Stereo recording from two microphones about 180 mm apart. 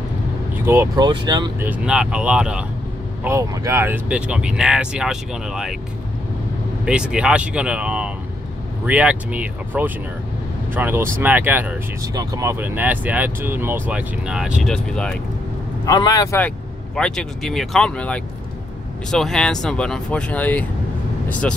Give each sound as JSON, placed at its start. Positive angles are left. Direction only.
{"t": 0.7, "sound": "speech", "side_deg": -15}
{"t": 1.0, "sound": "speech", "side_deg": -25}
{"t": 1.6, "sound": "speech", "side_deg": -5}
{"t": 3.3, "sound": "speech", "side_deg": -15}
{"t": 6.8, "sound": "speech", "side_deg": -5}
{"t": 15.8, "sound": "speech", "side_deg": 20}
{"t": 16.3, "sound": "speech", "side_deg": 5}